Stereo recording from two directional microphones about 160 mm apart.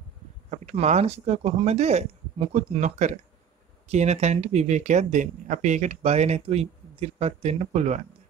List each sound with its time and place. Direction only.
0.5 s speech: 45° right (ahead or behind)